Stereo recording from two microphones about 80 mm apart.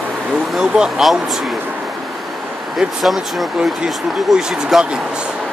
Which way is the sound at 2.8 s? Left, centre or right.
Centre.